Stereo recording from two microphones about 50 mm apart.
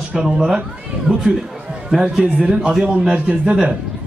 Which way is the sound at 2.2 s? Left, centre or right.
Right.